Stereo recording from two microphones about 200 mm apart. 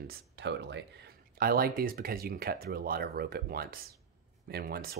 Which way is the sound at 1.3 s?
50° right (ahead or behind).